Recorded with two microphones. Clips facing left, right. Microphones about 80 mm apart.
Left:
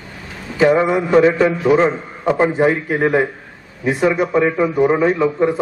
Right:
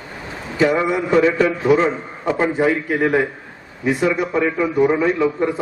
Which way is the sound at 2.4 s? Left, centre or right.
Left.